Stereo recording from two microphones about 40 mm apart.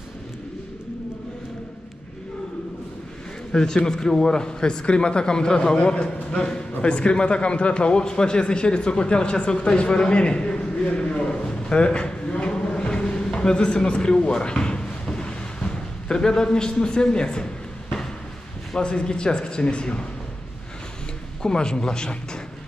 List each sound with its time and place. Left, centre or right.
3.5 s speech: centre
18.8 s speech: left
21.4 s speech: centre